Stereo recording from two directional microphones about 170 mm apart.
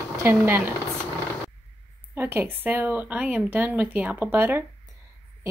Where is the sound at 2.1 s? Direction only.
10° right (ahead or behind).